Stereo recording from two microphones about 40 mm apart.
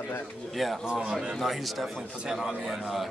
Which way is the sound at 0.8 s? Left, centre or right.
Right.